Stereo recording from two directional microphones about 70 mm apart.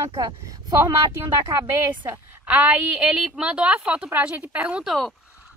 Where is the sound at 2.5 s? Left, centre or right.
Right.